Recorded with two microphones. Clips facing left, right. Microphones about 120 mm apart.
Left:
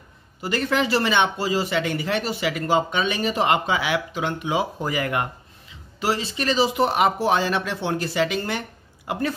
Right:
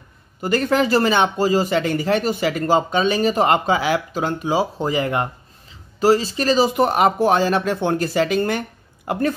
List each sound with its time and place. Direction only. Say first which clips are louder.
0.4 s speech: right 5 dB; 45° right (ahead or behind)